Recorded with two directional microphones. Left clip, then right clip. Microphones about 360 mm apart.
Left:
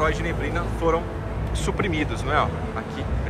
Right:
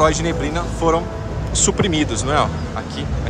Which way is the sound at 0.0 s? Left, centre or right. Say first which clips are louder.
Right 7 dB; centre.